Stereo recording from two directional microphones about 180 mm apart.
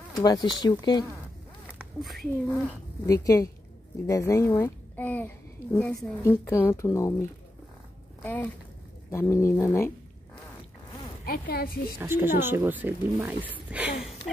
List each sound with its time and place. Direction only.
0.2 s speech: 25° left (ahead or behind)
1.8 s speech: centre (ahead or behind)
3.1 s a child's voice: 20° left (ahead or behind)
11.2 s speech: 55° left (ahead or behind)
12.0 s speech: 10° right (ahead or behind)